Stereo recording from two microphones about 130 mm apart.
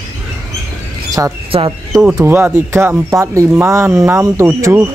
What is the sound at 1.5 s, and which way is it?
Speech, 45° right (ahead or behind).